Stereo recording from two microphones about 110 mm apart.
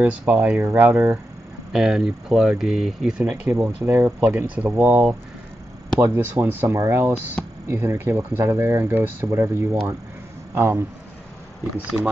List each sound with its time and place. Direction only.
0.0 s speech: 15° right (ahead or behind)
1.7 s speech: 5° right (ahead or behind); by 10.9 s 25° right (ahead or behind)